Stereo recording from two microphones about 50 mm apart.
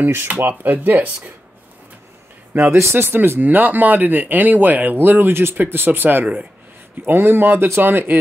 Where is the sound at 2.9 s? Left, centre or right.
Right.